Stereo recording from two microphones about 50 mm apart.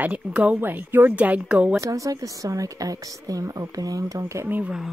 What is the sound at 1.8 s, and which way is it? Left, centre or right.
Speech, right.